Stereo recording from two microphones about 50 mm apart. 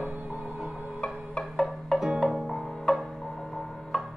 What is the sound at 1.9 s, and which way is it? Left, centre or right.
Music, centre.